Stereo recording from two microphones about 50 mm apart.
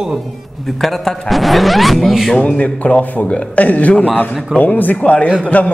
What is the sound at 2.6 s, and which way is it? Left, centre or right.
A man's voice, left.